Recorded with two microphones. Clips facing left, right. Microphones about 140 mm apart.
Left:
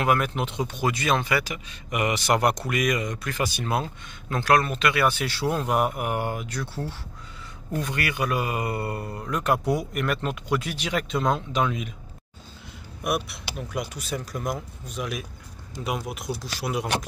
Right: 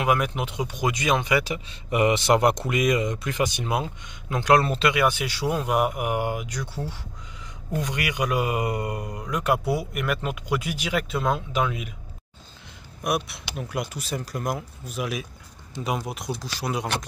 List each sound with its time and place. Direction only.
0.0 s speech: 15° right (ahead or behind)
4.9 s speech: 15° right (ahead or behind)
13.0 s speech: centre (ahead or behind)